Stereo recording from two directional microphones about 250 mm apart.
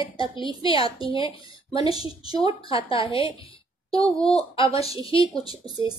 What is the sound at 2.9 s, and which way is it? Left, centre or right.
Speech, left.